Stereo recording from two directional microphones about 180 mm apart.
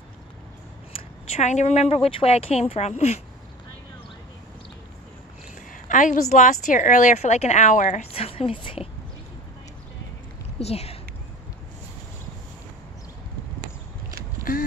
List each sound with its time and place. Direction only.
0.9 s speech: 35° left (ahead or behind)
5.7 s a woman's voice: 45° left (ahead or behind); by 8.8 s 30° left (ahead or behind)
10.6 s speech: 35° left (ahead or behind)
14.5 s a sound: 50° left (ahead or behind)